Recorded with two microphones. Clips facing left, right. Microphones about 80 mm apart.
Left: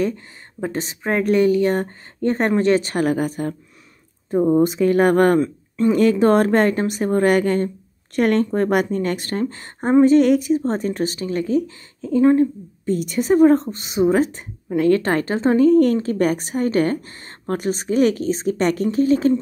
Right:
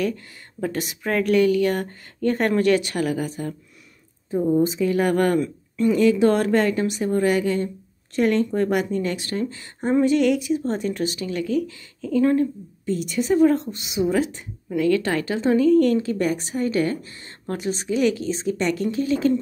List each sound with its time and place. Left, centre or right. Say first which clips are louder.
0.0 s a woman's voice: left 3 dB; left
5.4 s speech: left 3 dB; left
5.9 s a woman's voice: left 3 dB; left
12.8 s speech: left 3 dB; left